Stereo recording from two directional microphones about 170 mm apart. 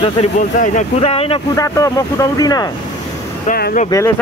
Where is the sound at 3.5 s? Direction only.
65° left (ahead or behind).